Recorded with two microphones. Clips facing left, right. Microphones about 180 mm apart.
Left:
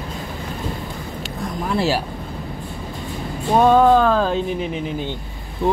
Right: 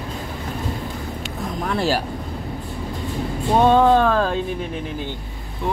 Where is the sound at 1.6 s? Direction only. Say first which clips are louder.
Left 1 dB; 10° left (ahead or behind).